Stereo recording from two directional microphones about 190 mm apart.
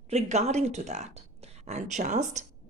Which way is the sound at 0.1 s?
35° right (ahead or behind).